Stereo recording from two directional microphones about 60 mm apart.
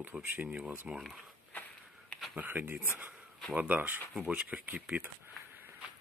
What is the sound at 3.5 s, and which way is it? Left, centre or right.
Speech, right.